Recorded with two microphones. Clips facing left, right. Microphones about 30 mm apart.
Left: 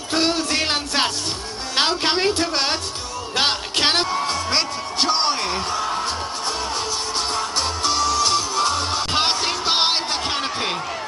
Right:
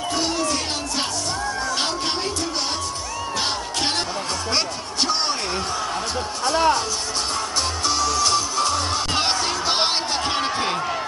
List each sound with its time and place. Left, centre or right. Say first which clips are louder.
0.1 s music: left 4 dB; left
1.8 s a sound: left 5 dB; left
3.3 s music: left 6 dB; left
4.1 s music: left 3 dB; centre
7.3 s music: left 1 dB; centre